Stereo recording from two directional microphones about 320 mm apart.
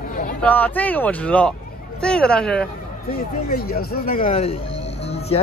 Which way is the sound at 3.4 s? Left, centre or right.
Left.